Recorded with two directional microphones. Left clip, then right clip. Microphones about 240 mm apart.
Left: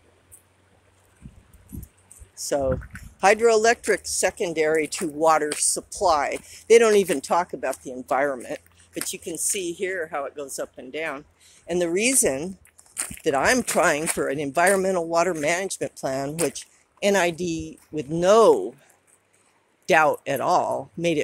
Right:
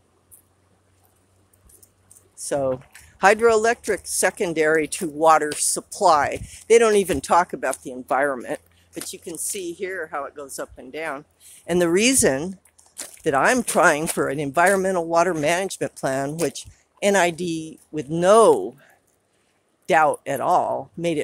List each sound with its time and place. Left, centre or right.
2.3 s speech: centre
4.2 s speech: centre
8.9 s speech: centre
11.6 s speech: right; by 18.9 s centre
19.9 s speech: centre